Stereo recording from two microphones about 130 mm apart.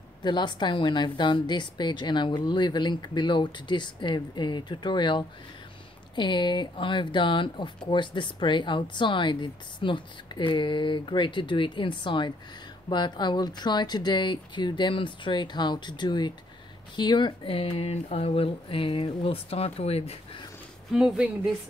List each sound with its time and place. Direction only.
0.2 s speech: 35° left (ahead or behind); by 20.4 s 50° left (ahead or behind)
20.9 s speech: 5° right (ahead or behind)